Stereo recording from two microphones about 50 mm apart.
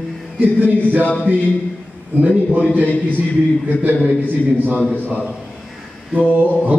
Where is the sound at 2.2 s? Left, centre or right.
Right.